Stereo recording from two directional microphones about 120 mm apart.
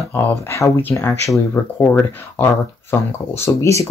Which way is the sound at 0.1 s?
20° left (ahead or behind).